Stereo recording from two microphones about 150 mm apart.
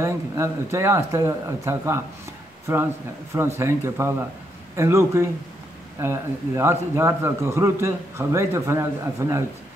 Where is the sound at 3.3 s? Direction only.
15° right (ahead or behind).